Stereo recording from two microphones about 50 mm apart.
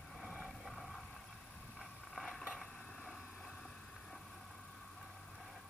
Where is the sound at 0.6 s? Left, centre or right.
Centre.